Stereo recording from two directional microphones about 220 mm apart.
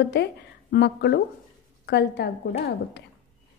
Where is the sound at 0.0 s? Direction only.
50° left (ahead or behind).